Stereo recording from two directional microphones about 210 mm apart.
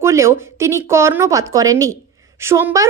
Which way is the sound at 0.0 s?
15° right (ahead or behind).